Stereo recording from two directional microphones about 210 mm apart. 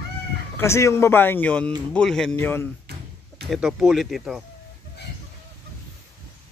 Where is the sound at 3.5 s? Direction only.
5° right (ahead or behind).